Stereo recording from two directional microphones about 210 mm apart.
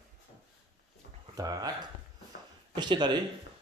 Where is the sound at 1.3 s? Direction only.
15° right (ahead or behind).